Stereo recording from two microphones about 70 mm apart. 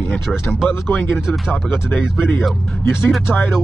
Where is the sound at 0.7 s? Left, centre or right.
Centre.